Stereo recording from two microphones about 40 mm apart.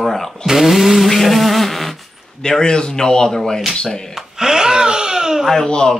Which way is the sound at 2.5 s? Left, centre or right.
Centre.